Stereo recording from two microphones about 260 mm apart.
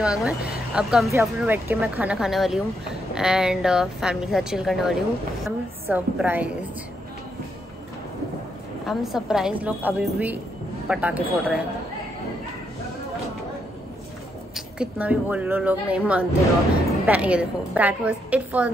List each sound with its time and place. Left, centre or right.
0.0 s a woman's voice: centre
8.8 s speech: centre
14.8 s speech: centre